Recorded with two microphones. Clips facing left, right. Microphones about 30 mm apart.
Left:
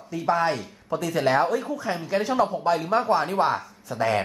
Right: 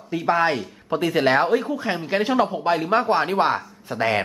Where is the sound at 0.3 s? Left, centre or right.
Right.